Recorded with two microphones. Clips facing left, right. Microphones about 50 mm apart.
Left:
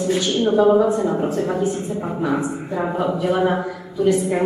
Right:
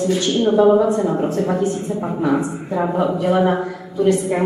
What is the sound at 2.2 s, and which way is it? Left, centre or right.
A woman's voice, centre.